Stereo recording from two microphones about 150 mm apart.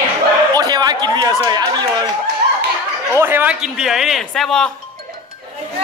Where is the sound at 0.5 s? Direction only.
25° right (ahead or behind).